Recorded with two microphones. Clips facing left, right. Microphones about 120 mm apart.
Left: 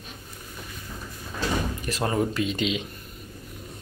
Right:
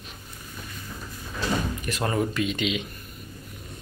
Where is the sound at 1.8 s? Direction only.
30° left (ahead or behind).